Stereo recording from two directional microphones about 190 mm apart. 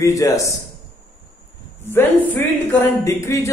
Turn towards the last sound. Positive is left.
turn(degrees=15)  # may be behind; listen again after turning